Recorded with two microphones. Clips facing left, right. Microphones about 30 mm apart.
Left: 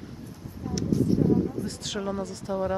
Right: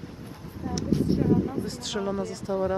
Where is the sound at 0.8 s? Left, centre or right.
Right.